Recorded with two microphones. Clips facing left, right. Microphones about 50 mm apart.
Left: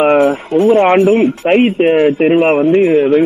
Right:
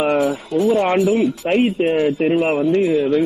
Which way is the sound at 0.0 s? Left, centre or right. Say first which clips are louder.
Left 7 dB; left.